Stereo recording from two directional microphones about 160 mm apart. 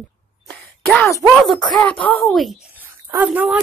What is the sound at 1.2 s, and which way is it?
Speech, centre (ahead or behind).